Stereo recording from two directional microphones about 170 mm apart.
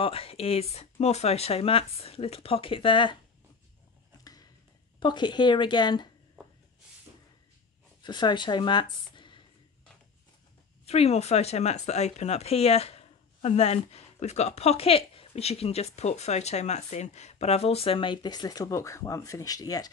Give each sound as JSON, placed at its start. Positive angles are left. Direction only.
{"t": 0.0, "sound": "speech", "side_deg": 35}
{"t": 4.2, "sound": "a sound", "side_deg": 20}
{"t": 5.0, "sound": "speech", "side_deg": 25}
{"t": 8.0, "sound": "speech", "side_deg": 25}
{"t": 10.9, "sound": "speech", "side_deg": 40}